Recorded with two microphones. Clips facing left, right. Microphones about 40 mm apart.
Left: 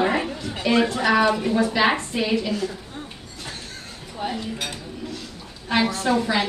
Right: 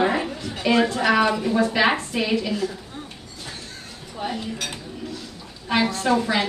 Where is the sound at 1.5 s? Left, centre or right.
Centre.